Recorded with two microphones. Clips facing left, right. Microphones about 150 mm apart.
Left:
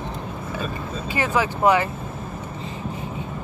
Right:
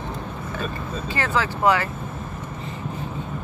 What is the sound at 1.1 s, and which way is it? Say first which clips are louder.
Speech: left 2 dB; 15° left (ahead or behind).